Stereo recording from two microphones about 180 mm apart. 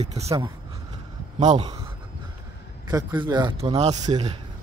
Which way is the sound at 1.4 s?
35° right (ahead or behind).